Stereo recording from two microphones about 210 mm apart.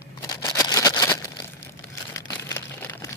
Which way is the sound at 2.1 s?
15° left (ahead or behind).